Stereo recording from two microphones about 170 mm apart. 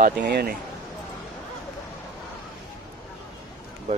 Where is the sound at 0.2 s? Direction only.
70° right (ahead or behind).